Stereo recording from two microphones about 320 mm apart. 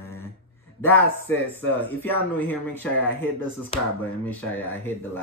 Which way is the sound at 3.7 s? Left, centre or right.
Centre.